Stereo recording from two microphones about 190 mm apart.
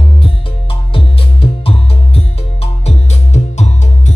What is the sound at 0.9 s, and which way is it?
Music, 30° left (ahead or behind).